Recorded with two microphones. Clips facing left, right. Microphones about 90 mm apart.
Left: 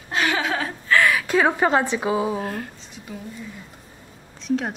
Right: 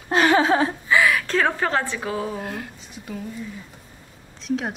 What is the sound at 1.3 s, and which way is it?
A woman's voice, 15° left (ahead or behind).